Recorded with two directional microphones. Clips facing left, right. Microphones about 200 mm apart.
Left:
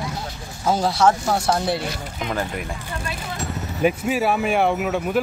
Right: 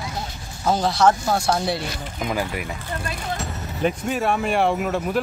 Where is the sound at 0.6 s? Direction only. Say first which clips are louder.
Even; 5° left (ahead or behind).